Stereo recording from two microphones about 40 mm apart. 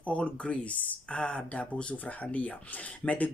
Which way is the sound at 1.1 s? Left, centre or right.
Left.